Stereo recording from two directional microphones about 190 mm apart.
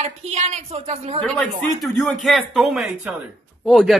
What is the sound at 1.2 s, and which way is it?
Speech, centre (ahead or behind).